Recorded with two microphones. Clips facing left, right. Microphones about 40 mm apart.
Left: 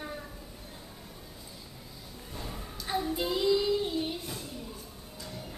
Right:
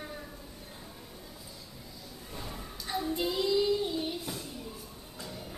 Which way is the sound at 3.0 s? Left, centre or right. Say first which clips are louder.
Left 1 dB; centre.